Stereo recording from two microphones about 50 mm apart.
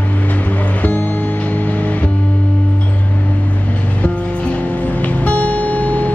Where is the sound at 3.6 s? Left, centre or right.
Left.